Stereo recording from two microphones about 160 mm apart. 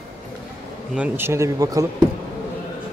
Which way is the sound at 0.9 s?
10° right (ahead or behind).